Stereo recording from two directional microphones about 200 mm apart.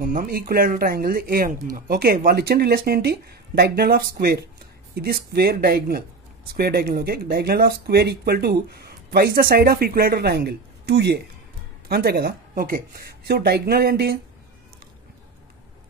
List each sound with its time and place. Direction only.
0.0 s speech: 45° right (ahead or behind)